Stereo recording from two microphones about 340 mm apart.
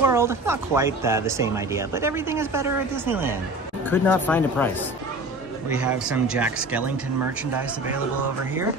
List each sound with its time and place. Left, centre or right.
0.0 s speech: centre
3.9 s speech: centre
5.9 s speech: centre